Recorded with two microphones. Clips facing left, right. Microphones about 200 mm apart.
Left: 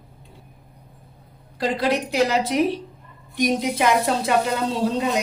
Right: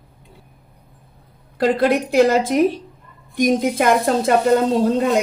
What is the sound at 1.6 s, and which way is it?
A woman's voice, 55° right (ahead or behind).